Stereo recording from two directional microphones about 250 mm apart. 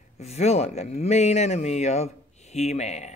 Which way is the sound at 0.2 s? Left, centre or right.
Left.